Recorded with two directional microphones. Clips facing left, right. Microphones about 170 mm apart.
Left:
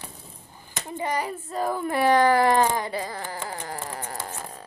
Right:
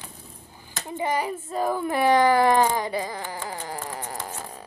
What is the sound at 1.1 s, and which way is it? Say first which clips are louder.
Speech: right 1 dB; 15° right (ahead or behind).